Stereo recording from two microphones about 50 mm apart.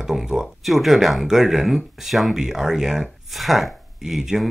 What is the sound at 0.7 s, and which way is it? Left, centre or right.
Speech, centre.